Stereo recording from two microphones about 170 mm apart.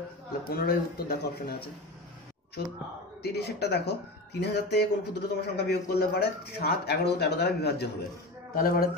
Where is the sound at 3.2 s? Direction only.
80° left.